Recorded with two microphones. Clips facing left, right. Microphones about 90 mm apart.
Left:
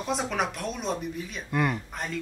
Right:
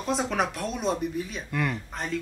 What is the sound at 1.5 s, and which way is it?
Speech, 20° left (ahead or behind).